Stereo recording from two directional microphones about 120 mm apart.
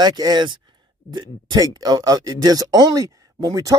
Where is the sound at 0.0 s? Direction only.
35° right (ahead or behind).